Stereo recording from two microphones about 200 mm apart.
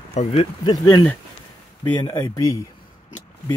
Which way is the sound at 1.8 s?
20° left (ahead or behind).